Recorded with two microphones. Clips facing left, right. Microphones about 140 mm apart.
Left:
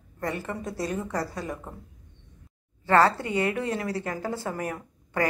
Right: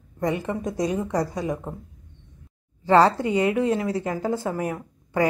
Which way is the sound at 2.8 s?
15° right (ahead or behind).